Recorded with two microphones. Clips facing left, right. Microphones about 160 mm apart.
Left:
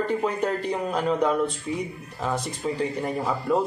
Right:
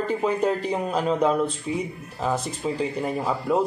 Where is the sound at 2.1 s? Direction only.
5° right (ahead or behind).